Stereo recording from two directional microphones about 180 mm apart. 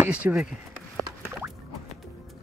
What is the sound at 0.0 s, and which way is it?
Speech, 5° right (ahead or behind).